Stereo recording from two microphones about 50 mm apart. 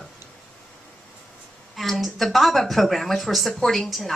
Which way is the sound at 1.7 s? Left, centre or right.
Centre.